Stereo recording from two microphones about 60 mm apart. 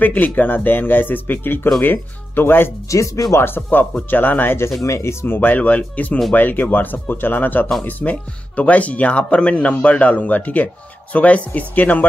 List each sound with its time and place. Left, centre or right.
0.0 s speech: left
2.9 s speech: left
3.3 s speech: left
4.8 s speech: left
5.2 s speech: left